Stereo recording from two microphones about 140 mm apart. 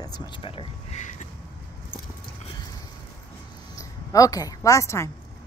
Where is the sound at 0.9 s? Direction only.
60° left (ahead or behind).